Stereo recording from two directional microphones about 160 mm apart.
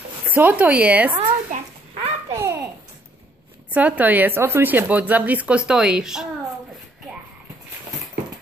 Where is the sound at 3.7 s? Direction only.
10° right (ahead or behind).